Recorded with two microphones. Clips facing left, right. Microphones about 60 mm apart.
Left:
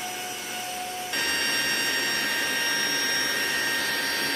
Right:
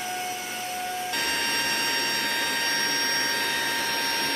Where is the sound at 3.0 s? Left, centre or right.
Right.